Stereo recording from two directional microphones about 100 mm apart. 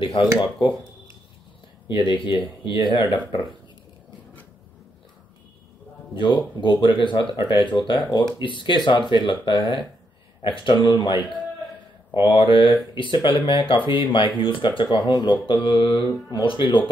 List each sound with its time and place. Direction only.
0.2 s speech: 55° left (ahead or behind)
1.9 s speech: 55° left (ahead or behind)
6.1 s speech: 55° left (ahead or behind)
15.0 s speech: 45° left (ahead or behind)
15.4 s speech: 55° left (ahead or behind)